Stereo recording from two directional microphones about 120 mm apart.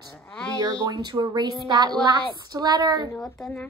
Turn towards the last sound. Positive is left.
turn(degrees=-30)  # may be behind; listen again after turning